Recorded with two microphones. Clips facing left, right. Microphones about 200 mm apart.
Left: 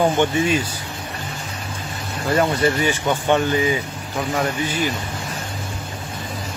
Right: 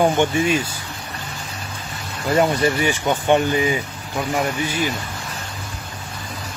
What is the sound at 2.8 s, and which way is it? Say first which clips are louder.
Speech: even; 15° right (ahead or behind).